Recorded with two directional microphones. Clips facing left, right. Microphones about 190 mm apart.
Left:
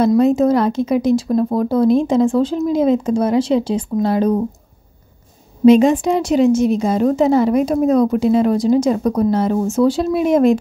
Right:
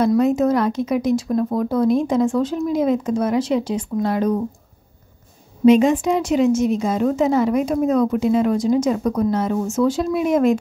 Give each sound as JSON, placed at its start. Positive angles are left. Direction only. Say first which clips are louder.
{"t": 0.0, "sound": "speech", "louder": "left 3 dB", "side_deg": 30}
{"t": 5.7, "sound": "a woman's voice", "louder": "left 3 dB", "side_deg": 30}